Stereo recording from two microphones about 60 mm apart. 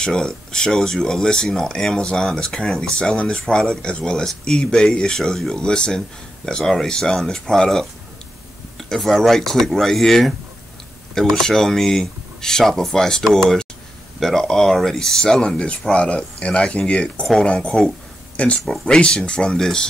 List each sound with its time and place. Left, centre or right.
0.0 s speech: centre